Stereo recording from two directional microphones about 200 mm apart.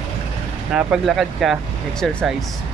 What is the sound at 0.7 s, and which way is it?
Speech, centre (ahead or behind).